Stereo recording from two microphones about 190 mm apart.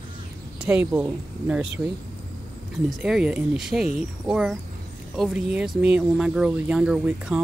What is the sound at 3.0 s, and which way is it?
Speech, 5° right (ahead or behind).